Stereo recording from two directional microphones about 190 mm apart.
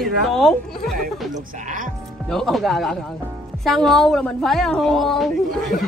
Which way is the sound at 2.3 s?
Centre (ahead or behind).